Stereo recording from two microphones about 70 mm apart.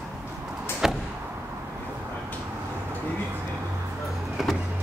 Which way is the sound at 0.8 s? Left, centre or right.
Centre.